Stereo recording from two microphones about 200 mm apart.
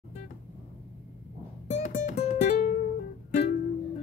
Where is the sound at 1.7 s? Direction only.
35° left (ahead or behind).